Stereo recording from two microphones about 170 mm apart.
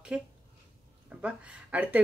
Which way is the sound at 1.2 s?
5° right (ahead or behind).